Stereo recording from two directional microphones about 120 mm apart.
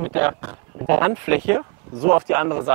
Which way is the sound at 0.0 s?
15° right (ahead or behind).